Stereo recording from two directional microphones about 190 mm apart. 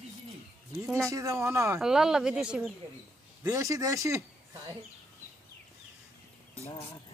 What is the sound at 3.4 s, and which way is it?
Speech, 15° right (ahead or behind).